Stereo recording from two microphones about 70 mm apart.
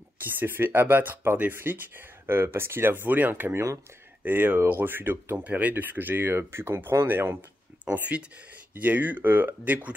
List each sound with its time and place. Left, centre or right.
0.2 s speech: right
5.4 s speech: right
7.8 s speech: right